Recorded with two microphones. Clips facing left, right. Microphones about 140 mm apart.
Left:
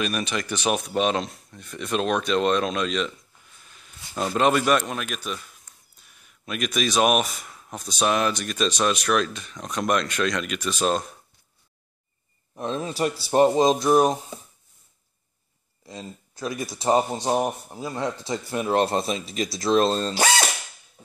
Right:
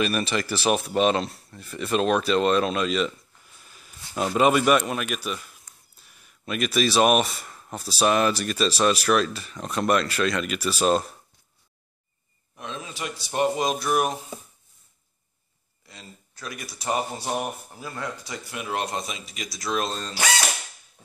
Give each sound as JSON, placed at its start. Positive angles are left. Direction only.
{"t": 0.0, "sound": "speech", "side_deg": 0}
{"t": 12.5, "sound": "speech", "side_deg": 40}
{"t": 15.9, "sound": "speech", "side_deg": 25}
{"t": 18.5, "sound": "speech", "side_deg": 35}